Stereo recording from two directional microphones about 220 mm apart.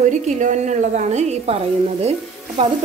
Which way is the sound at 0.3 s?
35° right (ahead or behind).